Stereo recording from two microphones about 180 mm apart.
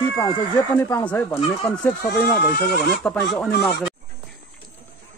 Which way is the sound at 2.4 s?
60° left (ahead or behind).